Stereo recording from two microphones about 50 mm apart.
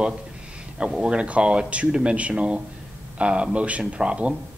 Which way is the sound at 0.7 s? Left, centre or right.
Right.